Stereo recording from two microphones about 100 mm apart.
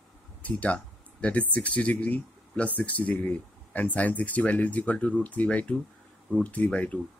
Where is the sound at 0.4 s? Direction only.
15° left (ahead or behind).